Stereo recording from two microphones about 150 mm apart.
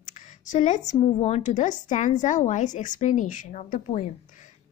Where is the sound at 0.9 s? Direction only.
40° left (ahead or behind).